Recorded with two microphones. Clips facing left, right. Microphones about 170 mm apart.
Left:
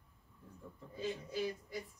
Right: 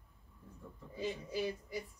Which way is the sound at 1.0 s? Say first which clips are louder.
Right 1 dB; 15° right (ahead or behind).